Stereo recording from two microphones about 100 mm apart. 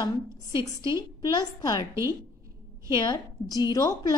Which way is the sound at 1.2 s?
45° left (ahead or behind).